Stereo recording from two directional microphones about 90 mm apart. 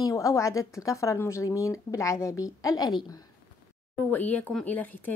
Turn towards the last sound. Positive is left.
turn(degrees=20)  # may be behind; listen again after turning